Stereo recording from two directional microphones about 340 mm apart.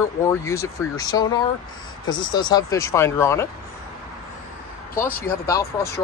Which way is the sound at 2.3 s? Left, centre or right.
Centre.